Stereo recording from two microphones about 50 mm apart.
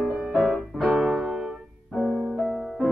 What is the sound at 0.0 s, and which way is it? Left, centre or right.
Music, centre.